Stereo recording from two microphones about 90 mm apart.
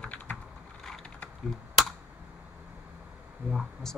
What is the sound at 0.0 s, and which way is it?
Typing, 15° left (ahead or behind).